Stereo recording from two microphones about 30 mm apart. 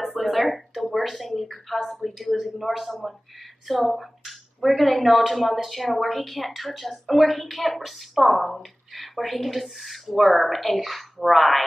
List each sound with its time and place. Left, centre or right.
0.0 s a sound: centre
0.9 s speech: centre
5.9 s a woman's voice: centre
6.2 s speech: centre